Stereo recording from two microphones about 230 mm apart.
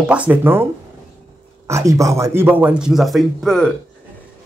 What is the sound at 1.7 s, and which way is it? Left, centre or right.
Speech, centre.